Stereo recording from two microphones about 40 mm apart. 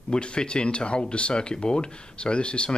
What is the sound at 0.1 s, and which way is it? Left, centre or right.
Speech, left.